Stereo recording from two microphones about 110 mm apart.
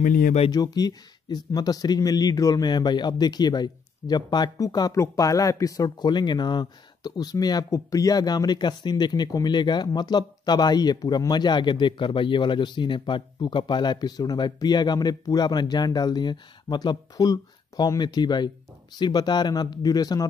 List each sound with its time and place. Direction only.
0.5 s speech: 35° left (ahead or behind)